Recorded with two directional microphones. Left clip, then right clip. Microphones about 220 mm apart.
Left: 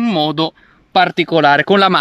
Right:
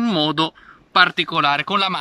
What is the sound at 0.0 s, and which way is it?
Speech, 10° left (ahead or behind).